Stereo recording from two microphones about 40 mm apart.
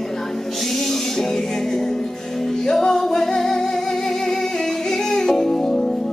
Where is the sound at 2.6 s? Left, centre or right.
Centre.